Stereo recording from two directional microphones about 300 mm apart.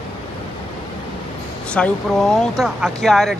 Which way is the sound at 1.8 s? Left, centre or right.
Centre.